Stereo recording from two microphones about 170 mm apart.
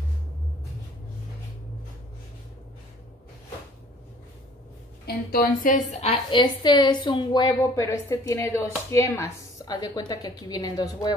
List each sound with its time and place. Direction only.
5.0 s a woman's voice: 60° left (ahead or behind); by 11.1 s 20° left (ahead or behind)